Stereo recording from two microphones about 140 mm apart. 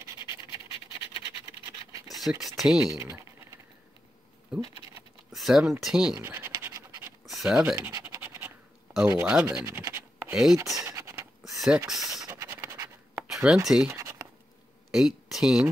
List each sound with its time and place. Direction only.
2.1 s speech: centre (ahead or behind)
2.9 s typing: 20° right (ahead or behind)
5.3 s speech: centre (ahead or behind)
6.2 s scratch: 15° right (ahead or behind)
7.2 s scratch: 5° right (ahead or behind)
7.7 s scratch: 20° right (ahead or behind)
10.3 s speech: centre (ahead or behind)
10.8 s a sound: 20° right (ahead or behind)
11.4 s a sound: centre (ahead or behind)
12.3 s scratch: 20° right (ahead or behind)
13.1 s a sound: 5° right (ahead or behind)
13.7 s speech: 5° right (ahead or behind)
13.9 s writing: 20° right (ahead or behind)
14.9 s speech: 5° right (ahead or behind)